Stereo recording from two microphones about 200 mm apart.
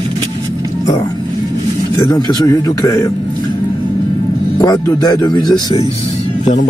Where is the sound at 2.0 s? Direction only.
20° left (ahead or behind).